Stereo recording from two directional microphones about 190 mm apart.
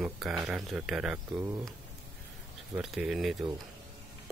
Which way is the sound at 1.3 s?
15° right (ahead or behind).